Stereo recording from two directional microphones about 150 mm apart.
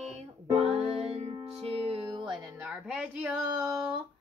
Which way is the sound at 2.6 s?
5° right (ahead or behind).